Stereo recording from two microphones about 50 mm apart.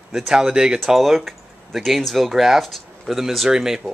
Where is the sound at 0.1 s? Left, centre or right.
Centre.